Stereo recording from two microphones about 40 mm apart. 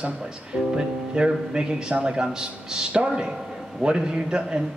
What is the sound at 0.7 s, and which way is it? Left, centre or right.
A man's voice, right.